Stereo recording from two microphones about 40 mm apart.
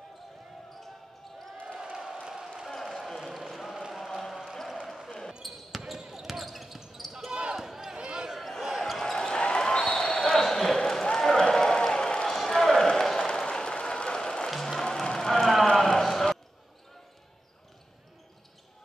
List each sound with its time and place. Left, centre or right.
1.7 s basketball bounce: centre
2.2 s a sound: centre
2.7 s basketball bounce: centre
5.4 s a sound: centre
7.2 s basketball bounce: right
7.5 s basketball bounce: centre
8.4 s basketball bounce: centre
8.6 s basketball bounce: centre
8.9 s basketball bounce: centre
12.4 s a sound: centre
13.4 s applause: centre
14.5 s music: centre
15.1 s run: centre
15.6 s a sound: centre